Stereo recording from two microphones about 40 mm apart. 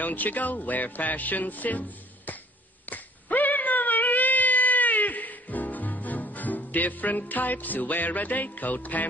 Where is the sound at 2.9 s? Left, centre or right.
Left.